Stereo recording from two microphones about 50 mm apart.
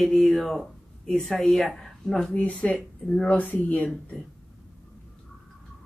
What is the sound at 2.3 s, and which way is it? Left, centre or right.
Speech, left.